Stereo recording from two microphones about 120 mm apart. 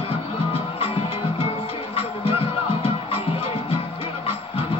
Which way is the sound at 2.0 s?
55° left (ahead or behind).